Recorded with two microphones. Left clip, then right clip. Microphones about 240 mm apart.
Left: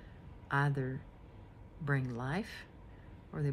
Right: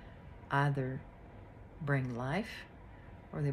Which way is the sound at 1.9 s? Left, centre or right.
Centre.